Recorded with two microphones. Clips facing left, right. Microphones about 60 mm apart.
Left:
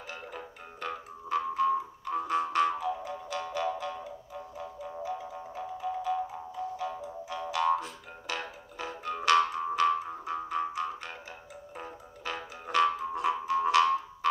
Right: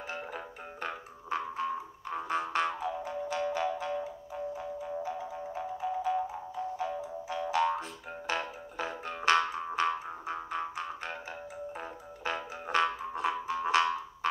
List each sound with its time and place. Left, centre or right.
0.7 s music: right
8.3 s music: right